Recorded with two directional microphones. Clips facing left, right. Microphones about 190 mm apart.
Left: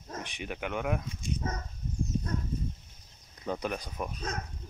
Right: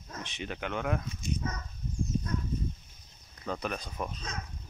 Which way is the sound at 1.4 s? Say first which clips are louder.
Left 1 dB; 35° left (ahead or behind).